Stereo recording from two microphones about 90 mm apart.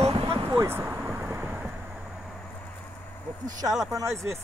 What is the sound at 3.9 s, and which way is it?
Speech, 40° right (ahead or behind).